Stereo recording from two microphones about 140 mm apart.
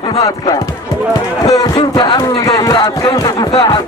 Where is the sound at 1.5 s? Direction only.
30° left (ahead or behind).